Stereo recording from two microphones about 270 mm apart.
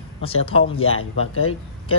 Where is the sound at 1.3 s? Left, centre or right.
Left.